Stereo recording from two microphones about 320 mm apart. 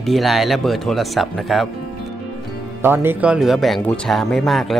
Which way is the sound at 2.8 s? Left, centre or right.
Centre.